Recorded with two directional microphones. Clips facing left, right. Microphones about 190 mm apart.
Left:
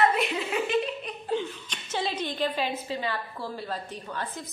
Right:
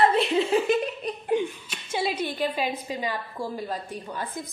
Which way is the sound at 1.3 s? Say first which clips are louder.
Right 4 dB; 15° right (ahead or behind).